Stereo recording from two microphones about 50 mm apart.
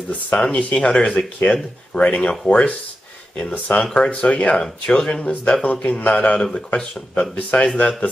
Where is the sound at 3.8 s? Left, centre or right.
Centre.